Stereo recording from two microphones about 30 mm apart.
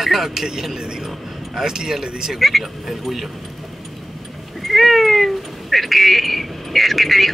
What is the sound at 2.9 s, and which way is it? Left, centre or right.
Speech, centre.